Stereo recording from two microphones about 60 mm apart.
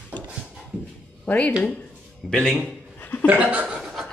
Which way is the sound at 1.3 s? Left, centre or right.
Left.